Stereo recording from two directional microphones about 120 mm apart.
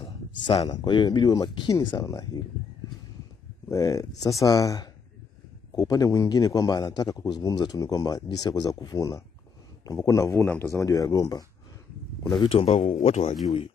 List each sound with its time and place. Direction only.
0.7 s a man's voice: 35° left (ahead or behind)
3.6 s a man's voice: 25° left (ahead or behind)
12.4 s a man's voice: 50° left (ahead or behind); by 13.2 s 65° left (ahead or behind)